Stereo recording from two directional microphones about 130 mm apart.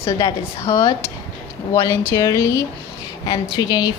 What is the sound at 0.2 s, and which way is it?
Speech, 25° left (ahead or behind).